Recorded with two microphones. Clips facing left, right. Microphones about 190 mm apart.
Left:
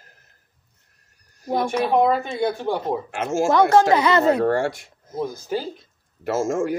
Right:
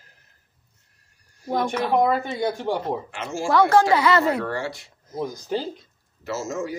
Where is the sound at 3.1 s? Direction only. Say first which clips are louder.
Left 7 dB; 50° left (ahead or behind).